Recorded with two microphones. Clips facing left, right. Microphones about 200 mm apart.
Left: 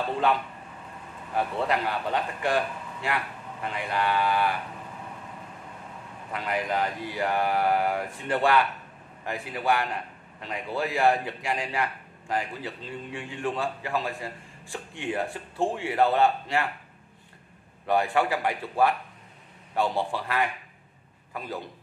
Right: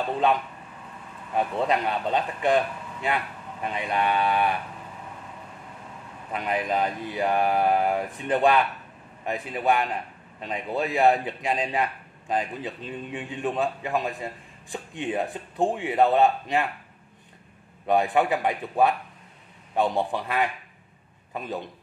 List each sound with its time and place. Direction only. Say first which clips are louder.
1.3 s a man's voice: right 2 dB; 20° right (ahead or behind)
6.3 s a man's voice: right 2 dB; 20° right (ahead or behind)
17.8 s a man's voice: right 2 dB; 20° right (ahead or behind)